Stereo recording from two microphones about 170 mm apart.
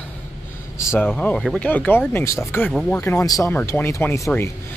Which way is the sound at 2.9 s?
15° left (ahead or behind).